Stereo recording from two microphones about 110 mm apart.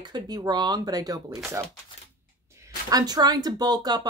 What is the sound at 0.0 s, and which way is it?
Speech, 40° right (ahead or behind).